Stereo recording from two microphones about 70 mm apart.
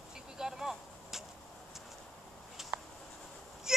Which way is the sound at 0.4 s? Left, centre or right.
Centre.